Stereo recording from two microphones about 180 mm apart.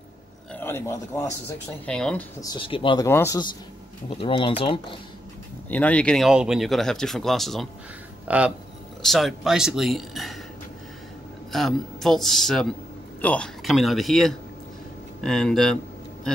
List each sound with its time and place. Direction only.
0.5 s speech: 10° left (ahead or behind)
1.9 s speech: 5° left (ahead or behind)
2.4 s speech: 25° left (ahead or behind)
3.1 s speech: 15° left (ahead or behind)
4.1 s speech: 30° left (ahead or behind)
5.7 s speech: 10° left (ahead or behind)
11.5 s speech: centre (ahead or behind)